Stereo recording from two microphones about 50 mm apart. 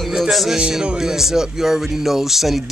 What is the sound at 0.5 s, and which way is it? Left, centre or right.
Speech, centre.